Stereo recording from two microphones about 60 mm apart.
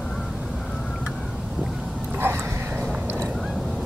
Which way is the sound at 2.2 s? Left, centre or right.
Right.